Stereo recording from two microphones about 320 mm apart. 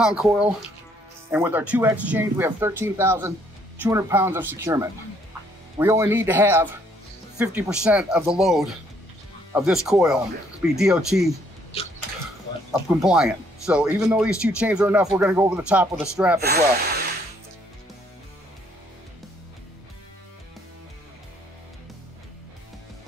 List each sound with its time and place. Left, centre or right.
0.0 s speech: centre
13.0 s speech: centre
16.4 s speech: right